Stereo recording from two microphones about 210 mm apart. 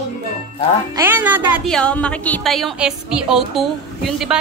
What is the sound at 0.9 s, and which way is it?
Speech, 10° right (ahead or behind).